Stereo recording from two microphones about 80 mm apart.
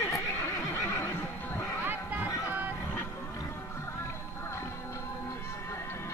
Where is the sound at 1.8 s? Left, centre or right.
Right.